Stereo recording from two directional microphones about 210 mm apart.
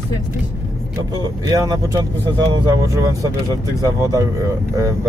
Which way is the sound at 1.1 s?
15° right (ahead or behind).